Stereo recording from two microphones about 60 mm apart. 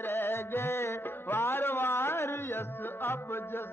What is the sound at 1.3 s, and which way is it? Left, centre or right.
A man's voice, left.